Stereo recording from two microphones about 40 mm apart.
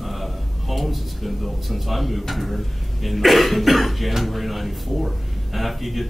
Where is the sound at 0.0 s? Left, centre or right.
Centre.